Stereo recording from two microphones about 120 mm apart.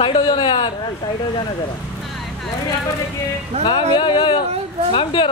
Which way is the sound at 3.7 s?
40° left (ahead or behind).